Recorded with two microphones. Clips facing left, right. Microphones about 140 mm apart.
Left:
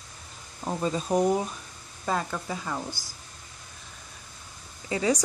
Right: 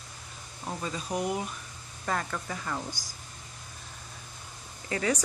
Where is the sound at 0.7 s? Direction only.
30° left (ahead or behind).